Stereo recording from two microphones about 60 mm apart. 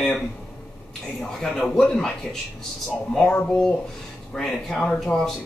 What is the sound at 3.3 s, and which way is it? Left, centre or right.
Speech, left.